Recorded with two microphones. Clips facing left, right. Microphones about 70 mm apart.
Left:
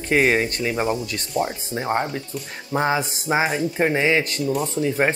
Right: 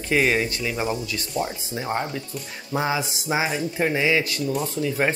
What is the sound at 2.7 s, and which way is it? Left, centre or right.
Speech, left.